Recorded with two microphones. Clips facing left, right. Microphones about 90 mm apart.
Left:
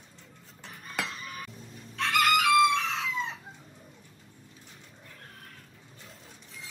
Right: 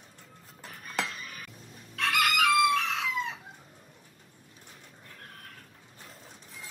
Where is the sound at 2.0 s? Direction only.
35° left (ahead or behind).